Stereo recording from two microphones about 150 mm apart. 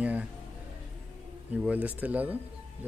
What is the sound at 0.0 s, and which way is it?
Music, 10° right (ahead or behind).